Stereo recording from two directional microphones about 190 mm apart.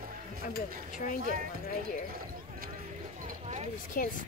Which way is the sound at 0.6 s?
40° left (ahead or behind).